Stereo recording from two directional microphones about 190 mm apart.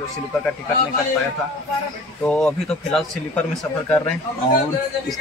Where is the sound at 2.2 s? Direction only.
5° left (ahead or behind).